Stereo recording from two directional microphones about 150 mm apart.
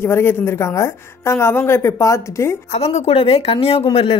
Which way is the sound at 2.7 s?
45° left (ahead or behind).